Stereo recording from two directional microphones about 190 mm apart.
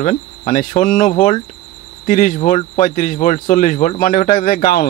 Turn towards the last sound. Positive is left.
turn(degrees=50)  # may be behind; listen again after turning